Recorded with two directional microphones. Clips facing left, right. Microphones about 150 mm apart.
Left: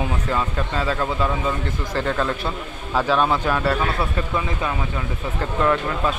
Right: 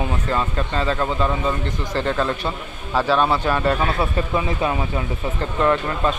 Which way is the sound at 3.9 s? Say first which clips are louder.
Right 2 dB; 20° right (ahead or behind).